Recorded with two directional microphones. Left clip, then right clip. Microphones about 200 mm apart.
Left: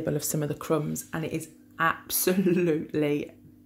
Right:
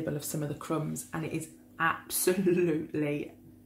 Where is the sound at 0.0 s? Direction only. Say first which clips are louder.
Left 5 dB; 35° left (ahead or behind).